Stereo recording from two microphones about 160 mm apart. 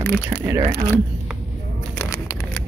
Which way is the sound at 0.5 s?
20° right (ahead or behind).